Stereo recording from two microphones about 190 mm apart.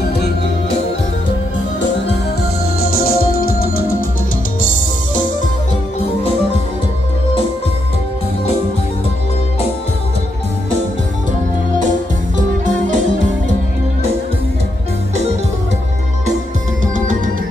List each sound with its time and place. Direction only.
2.8 s music: 50° left (ahead or behind)
12.4 s music: 40° right (ahead or behind)
16.8 s music: 45° right (ahead or behind)